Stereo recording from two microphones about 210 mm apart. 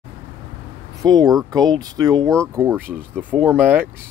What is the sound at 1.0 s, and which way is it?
Speech, 20° right (ahead or behind).